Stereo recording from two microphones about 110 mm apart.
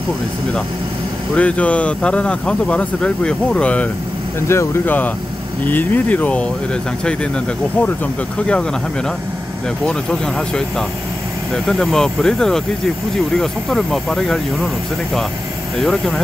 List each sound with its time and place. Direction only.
1.3 s speech: 10° left (ahead or behind)
4.5 s speech: 25° left (ahead or behind)
8.4 s speech: 10° left (ahead or behind)
9.8 s speech: 5° left (ahead or behind)
15.8 s speech: 5° left (ahead or behind)